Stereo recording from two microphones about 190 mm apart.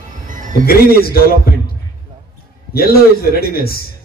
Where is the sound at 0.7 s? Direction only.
50° left (ahead or behind).